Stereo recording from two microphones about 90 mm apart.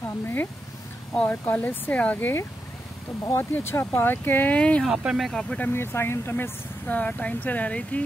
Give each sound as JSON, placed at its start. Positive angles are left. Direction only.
{"t": 0.0, "sound": "a sound", "side_deg": 20}
{"t": 1.1, "sound": "speech", "side_deg": 15}
{"t": 3.5, "sound": "speech", "side_deg": 25}
{"t": 4.8, "sound": "speech", "side_deg": -5}
{"t": 5.7, "sound": "speech", "side_deg": 25}